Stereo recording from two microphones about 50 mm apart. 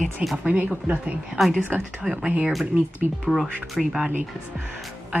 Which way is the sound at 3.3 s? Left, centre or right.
Centre.